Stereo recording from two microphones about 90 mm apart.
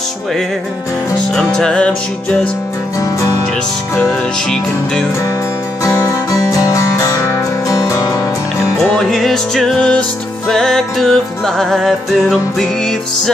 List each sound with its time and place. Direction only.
1.3 s music: 10° left (ahead or behind)
4.1 s music: 5° left (ahead or behind)
5.9 s music: 35° left (ahead or behind)
8.9 s music: 5° left (ahead or behind)